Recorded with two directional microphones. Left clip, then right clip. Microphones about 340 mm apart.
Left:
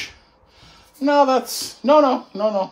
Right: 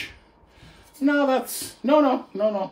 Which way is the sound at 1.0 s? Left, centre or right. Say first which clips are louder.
Left 5 dB; centre.